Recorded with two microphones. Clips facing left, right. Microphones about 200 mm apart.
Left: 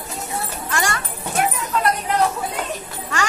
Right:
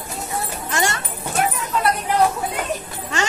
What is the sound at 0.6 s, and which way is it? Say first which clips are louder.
Children playing: right 1 dB; 20° right (ahead or behind).